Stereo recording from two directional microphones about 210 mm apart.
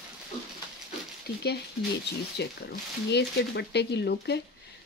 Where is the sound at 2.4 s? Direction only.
55° left (ahead or behind).